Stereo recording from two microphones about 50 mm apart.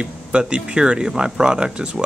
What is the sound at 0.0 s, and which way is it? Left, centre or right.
Speech, centre.